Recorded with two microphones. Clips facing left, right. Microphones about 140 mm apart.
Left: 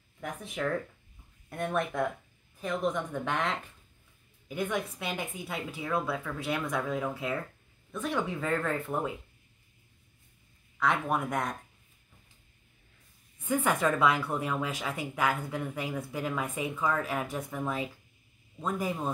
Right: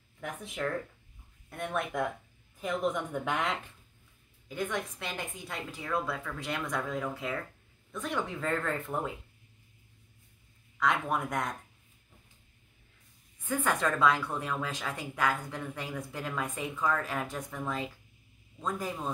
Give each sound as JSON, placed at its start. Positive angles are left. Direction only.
{"t": 0.2, "sound": "speech", "side_deg": 0}
{"t": 4.5, "sound": "a woman's voice", "side_deg": 10}
{"t": 10.8, "sound": "speech", "side_deg": 0}
{"t": 13.4, "sound": "a woman's voice", "side_deg": 15}